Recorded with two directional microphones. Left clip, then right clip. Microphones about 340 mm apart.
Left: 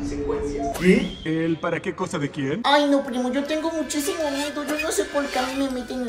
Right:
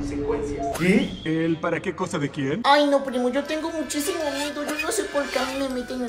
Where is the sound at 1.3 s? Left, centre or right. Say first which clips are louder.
Even; centre.